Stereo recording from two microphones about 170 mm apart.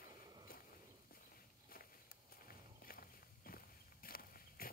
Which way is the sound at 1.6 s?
60° left (ahead or behind).